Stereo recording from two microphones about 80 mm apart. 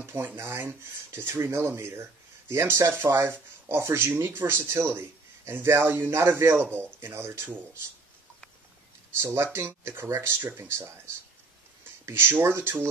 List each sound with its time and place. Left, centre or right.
0.0 s speech: right
9.2 s speech: right
12.1 s speech: right